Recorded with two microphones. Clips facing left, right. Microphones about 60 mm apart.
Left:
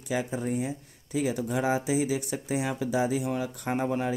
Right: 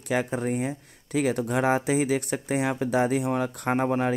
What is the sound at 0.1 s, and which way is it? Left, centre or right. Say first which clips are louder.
Speech: right 3 dB; right.